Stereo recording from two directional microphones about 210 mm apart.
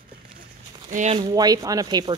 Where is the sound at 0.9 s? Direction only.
30° right (ahead or behind).